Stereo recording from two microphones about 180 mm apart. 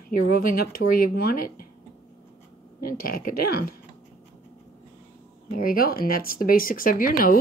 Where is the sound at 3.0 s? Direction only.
55° left (ahead or behind).